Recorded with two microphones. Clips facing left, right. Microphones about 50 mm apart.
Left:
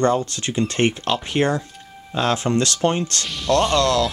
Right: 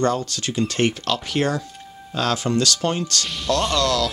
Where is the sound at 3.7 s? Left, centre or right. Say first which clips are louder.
Left 3 dB; left.